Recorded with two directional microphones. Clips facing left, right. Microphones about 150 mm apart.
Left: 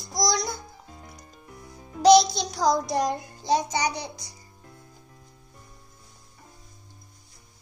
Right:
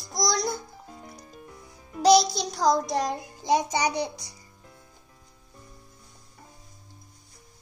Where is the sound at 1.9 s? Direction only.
5° right (ahead or behind).